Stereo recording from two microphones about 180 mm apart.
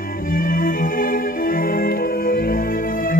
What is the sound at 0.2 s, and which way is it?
Music, 50° left (ahead or behind).